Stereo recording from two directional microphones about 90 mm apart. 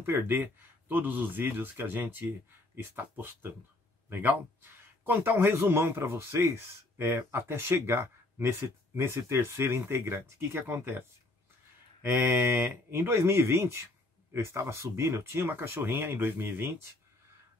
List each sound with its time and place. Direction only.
0.0 s a man's voice: 25° right (ahead or behind)